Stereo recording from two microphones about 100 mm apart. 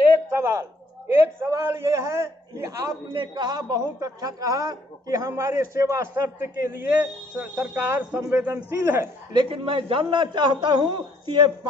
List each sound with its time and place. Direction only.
0.4 s a man's voice: 25° right (ahead or behind)
3.1 s a man's voice: 50° right (ahead or behind); by 9.1 s 20° right (ahead or behind)
9.3 s a man's voice: 55° right (ahead or behind)